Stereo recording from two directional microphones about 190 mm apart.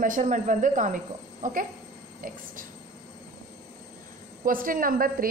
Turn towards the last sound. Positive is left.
turn(degrees=-50)  # may be behind; listen again after turning